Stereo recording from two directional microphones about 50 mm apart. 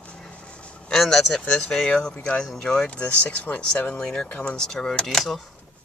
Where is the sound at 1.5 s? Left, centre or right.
Centre.